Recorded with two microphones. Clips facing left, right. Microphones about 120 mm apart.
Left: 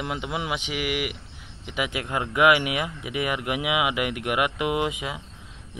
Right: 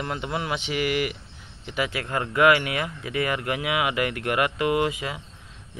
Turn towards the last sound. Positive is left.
turn(degrees=15)  # may be behind; listen again after turning